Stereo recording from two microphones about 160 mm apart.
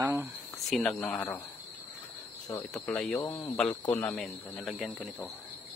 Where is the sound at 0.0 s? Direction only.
10° right (ahead or behind).